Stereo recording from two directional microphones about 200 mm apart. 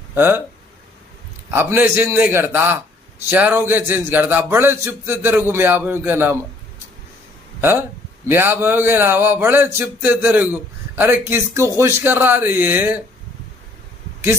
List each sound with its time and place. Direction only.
0.1 s speech: 10° right (ahead or behind)
1.5 s speech: 10° right (ahead or behind)
8.3 s speech: 10° right (ahead or behind)